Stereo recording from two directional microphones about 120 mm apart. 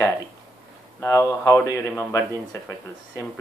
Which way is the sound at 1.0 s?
25° left (ahead or behind).